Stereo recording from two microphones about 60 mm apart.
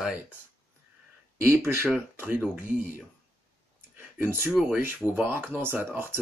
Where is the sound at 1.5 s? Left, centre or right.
Right.